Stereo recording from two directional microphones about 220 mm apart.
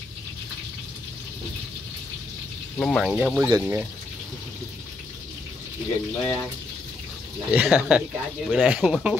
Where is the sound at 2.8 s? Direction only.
Centre (ahead or behind).